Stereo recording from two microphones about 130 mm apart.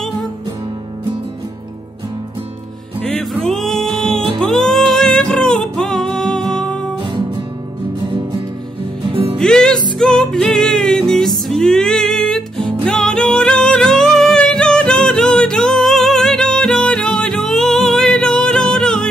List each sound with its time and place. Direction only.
3.0 s music: 5° left (ahead or behind)
9.1 s music: 45° right (ahead or behind)
9.4 s music: 5° left (ahead or behind)